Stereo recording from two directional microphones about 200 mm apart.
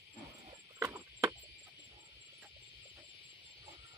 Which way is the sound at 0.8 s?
15° right (ahead or behind).